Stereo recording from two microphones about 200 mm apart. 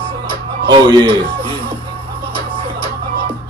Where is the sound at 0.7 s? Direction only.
25° right (ahead or behind).